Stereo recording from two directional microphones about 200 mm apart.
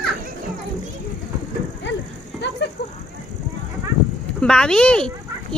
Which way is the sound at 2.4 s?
60° left (ahead or behind).